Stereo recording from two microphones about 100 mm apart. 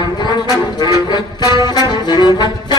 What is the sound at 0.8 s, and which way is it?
Music, 45° left (ahead or behind).